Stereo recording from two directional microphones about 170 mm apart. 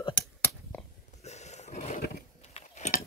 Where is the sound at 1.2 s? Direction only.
40° left (ahead or behind).